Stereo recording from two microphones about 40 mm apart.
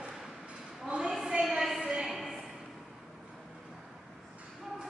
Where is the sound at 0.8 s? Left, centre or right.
Right.